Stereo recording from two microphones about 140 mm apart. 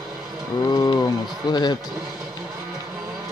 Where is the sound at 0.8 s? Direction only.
25° left (ahead or behind).